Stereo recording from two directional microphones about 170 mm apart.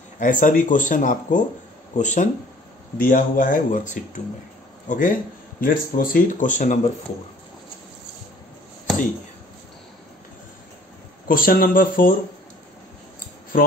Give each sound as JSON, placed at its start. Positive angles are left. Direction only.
{"t": 0.2, "sound": "a man's voice", "side_deg": 50}
{"t": 11.2, "sound": "speech", "side_deg": 55}